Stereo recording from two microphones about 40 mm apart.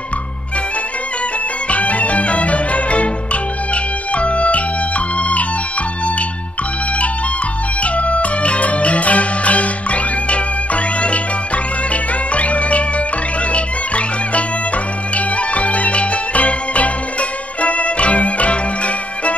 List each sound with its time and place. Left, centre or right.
1.7 s music: left
3.7 s organ: left
7.8 s music: left